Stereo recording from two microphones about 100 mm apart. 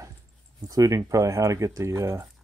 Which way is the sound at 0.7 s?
35° right (ahead or behind).